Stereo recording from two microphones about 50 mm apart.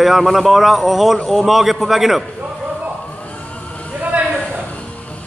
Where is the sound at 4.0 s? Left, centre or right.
Right.